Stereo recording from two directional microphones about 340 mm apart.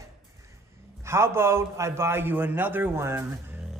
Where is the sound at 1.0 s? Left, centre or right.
Centre.